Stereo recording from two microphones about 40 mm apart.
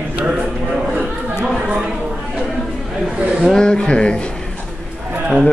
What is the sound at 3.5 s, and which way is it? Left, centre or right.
Speech, centre.